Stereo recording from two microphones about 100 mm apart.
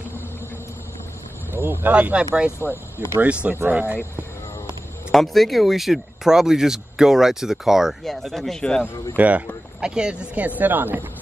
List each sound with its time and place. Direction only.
1.5 s speech: 20° right (ahead or behind)
3.8 s speech: 20° left (ahead or behind)
5.1 s speech: centre (ahead or behind)
9.1 s speech: 15° right (ahead or behind)